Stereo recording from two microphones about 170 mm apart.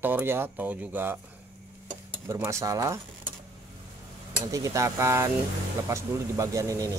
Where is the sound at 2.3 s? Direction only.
15° right (ahead or behind).